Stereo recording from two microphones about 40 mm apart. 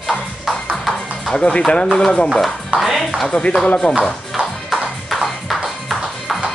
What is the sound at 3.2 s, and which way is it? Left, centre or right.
Speech, left.